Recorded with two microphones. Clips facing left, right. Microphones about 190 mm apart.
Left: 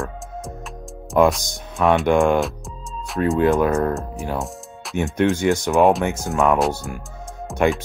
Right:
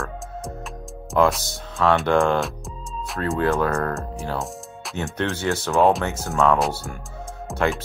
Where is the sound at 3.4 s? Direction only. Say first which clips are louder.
Left 3 dB; 15° left (ahead or behind).